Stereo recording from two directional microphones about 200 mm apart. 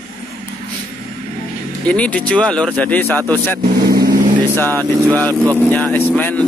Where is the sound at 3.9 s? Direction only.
50° right (ahead or behind).